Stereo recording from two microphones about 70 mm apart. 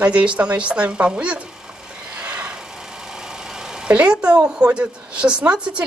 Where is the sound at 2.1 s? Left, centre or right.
Centre.